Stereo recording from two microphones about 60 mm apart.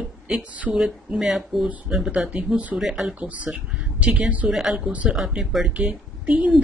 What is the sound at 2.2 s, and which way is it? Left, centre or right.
Speech, right.